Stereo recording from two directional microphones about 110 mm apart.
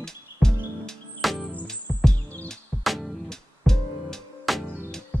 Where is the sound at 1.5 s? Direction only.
15° left (ahead or behind).